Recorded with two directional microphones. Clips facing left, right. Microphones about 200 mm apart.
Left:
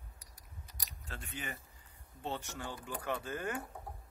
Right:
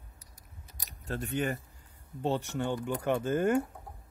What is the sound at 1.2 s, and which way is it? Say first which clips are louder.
Speech: right 14 dB; 65° right (ahead or behind).